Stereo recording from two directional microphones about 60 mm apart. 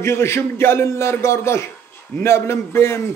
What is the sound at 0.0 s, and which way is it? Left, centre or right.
A man's voice, left.